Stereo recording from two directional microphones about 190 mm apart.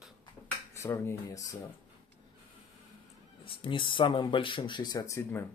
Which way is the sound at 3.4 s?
25° left (ahead or behind).